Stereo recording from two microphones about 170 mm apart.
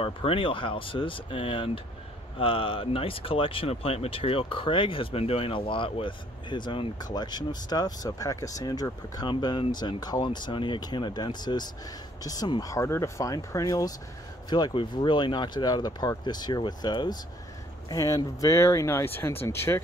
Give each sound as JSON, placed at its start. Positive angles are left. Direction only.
{"t": 0.0, "sound": "speech", "side_deg": 35}